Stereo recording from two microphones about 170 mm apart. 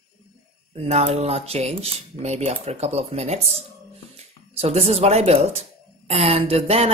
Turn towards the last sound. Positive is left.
turn(degrees=-35)  # may be behind; listen again after turning